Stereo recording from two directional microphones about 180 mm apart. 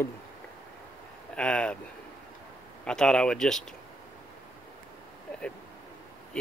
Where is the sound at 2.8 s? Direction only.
5° left (ahead or behind).